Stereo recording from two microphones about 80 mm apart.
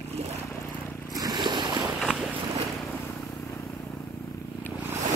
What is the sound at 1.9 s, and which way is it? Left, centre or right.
Boat, centre.